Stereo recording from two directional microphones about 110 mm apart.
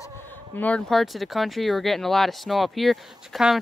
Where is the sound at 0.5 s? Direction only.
15° left (ahead or behind).